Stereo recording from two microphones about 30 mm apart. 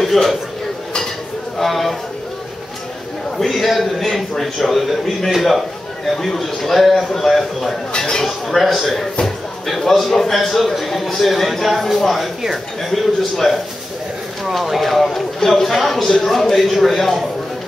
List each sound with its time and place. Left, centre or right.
0.0 s speech: centre
1.6 s a man's voice: centre
3.3 s a man's voice: centre
8.5 s a man's voice: centre